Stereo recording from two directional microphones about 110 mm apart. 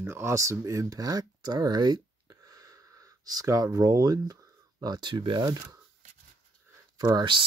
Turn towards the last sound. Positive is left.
turn(degrees=-45)  # may be behind; listen again after turning